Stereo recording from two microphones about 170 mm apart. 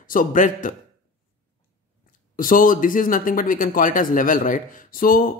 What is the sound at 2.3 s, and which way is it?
Speech, 55° left (ahead or behind).